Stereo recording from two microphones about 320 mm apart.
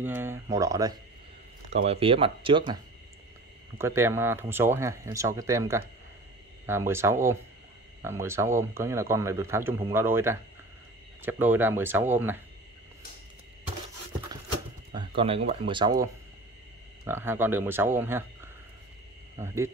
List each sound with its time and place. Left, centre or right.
0.0 s a man's voice: centre
15.0 s a man's voice: centre